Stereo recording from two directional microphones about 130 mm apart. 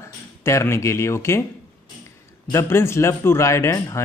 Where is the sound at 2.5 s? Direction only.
20° left (ahead or behind).